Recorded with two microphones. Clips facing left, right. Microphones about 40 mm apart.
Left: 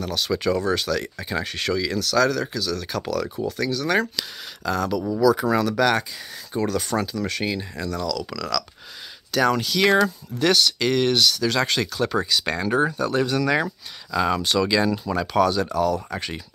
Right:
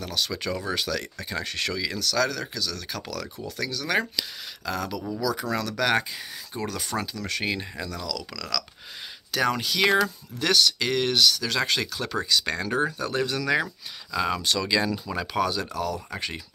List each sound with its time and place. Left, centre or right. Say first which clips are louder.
0.0 s speech: left 6 dB; centre
1.1 s speech: left 4 dB; centre
5.3 s speech: left 8 dB; centre
6.5 s speech: left 7 dB; centre
9.3 s speech: left 4 dB; centre
10.0 s speech: left 5 dB; centre
12.1 s speech: left 3 dB; centre
12.9 s speech: left 5 dB; centre
15.1 s speech: left 6 dB; centre